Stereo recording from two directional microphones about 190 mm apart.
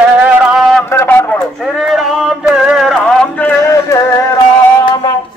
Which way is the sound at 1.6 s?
Centre (ahead or behind).